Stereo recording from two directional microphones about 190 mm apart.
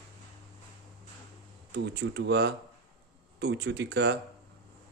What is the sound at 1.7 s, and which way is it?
Speech, 65° right (ahead or behind).